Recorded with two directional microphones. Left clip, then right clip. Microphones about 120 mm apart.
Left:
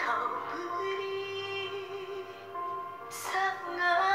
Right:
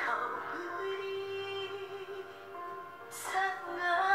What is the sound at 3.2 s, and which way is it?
Music, centre (ahead or behind).